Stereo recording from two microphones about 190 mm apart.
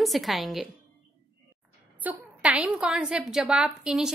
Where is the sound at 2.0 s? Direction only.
5° right (ahead or behind).